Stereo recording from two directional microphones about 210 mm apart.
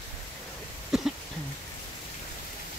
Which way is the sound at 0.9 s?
Centre (ahead or behind).